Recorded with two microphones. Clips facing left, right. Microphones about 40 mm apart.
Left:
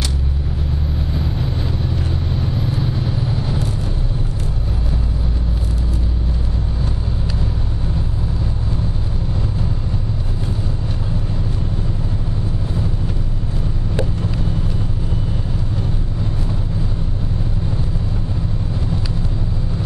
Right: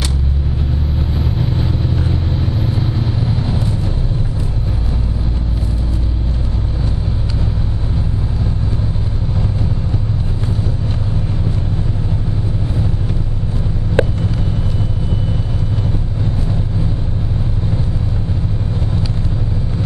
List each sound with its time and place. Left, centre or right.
14.0 s vehicle: right